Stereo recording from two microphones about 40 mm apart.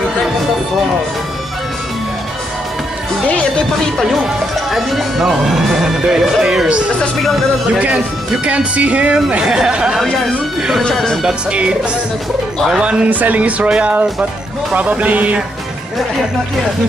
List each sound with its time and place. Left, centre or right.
4.2 s speech: centre
8.5 s speech: right
9.7 s music: right
11.5 s music: right
12.8 s speech: right
13.1 s speech: right
13.7 s music: right
14.7 s speech: right